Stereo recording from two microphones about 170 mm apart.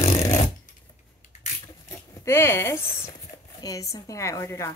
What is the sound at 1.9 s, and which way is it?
Zipper, 15° left (ahead or behind).